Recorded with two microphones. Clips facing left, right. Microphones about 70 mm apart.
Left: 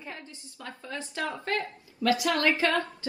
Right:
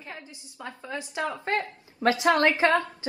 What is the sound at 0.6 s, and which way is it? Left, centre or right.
A woman's voice, right.